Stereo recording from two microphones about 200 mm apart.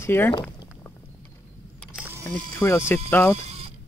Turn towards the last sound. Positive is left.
turn(degrees=-30)  # may be behind; listen again after turning